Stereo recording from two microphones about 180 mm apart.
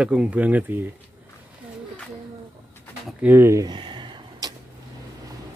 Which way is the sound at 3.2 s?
10° right (ahead or behind).